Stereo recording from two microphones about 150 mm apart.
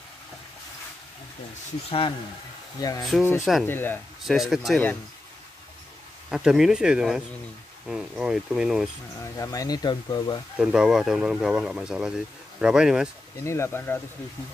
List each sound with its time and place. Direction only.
1.9 s speech: 35° left (ahead or behind)
2.8 s speech: 25° left (ahead or behind)
3.6 s speech: 15° left (ahead or behind)
4.2 s speech: centre (ahead or behind)
6.3 s speech: 5° right (ahead or behind)
9.2 s speech: 20° left (ahead or behind)
10.6 s speech: 5° right (ahead or behind)
13.4 s speech: 20° left (ahead or behind)